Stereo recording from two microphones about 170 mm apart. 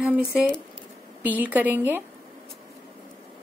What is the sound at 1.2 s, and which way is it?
Speech, 10° right (ahead or behind).